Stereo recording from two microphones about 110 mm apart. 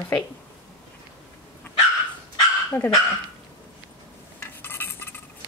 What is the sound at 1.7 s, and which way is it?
Dog, 20° left (ahead or behind).